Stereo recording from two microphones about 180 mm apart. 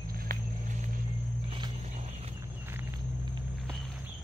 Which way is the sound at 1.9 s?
35° right (ahead or behind).